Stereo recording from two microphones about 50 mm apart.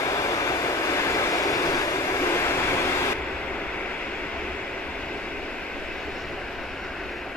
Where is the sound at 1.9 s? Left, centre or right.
Left.